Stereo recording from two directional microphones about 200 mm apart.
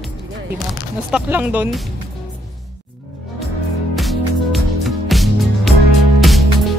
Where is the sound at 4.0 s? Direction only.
Centre (ahead or behind).